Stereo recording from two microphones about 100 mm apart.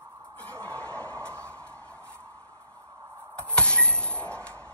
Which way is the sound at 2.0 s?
25° right (ahead or behind).